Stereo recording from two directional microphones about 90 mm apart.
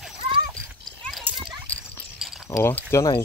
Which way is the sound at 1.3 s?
20° right (ahead or behind).